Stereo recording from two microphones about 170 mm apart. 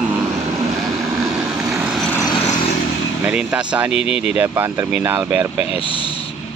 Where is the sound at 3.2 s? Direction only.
5° right (ahead or behind).